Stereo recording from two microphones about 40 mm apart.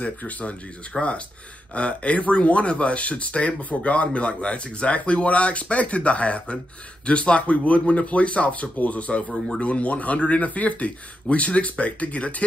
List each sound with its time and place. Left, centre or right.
0.0 s speech: left
0.9 s speech: centre
1.7 s speech: left